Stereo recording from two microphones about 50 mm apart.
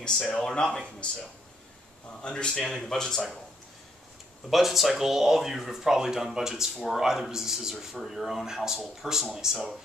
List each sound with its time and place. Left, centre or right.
0.4 s speech: centre
2.2 s speech: centre
2.5 s speech: centre
4.5 s speech: centre